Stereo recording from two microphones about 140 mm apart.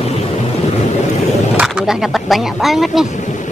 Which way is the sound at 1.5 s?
5° right (ahead or behind).